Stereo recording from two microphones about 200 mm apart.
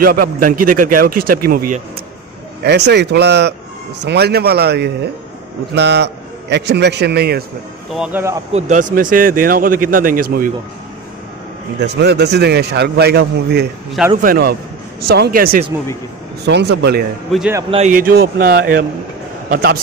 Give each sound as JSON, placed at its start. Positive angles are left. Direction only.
{"t": 0.0, "sound": "a man's voice", "side_deg": -45}
{"t": 7.9, "sound": "speech", "side_deg": -5}
{"t": 8.5, "sound": "a man's voice", "side_deg": -40}
{"t": 11.8, "sound": "a man's voice", "side_deg": -55}
{"t": 16.4, "sound": "a man's voice", "side_deg": -60}
{"t": 17.3, "sound": "speech", "side_deg": -5}
{"t": 17.6, "sound": "speech", "side_deg": -30}
{"t": 17.9, "sound": "a man's voice", "side_deg": -50}